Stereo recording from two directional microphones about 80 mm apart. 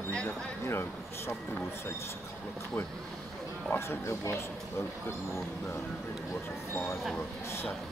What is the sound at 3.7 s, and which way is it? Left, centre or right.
Speech, left.